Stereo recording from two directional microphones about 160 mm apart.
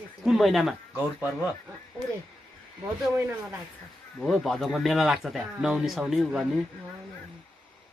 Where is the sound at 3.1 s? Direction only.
15° right (ahead or behind).